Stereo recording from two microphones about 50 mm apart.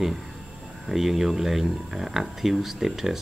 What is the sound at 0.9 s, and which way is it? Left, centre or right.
Speech, centre.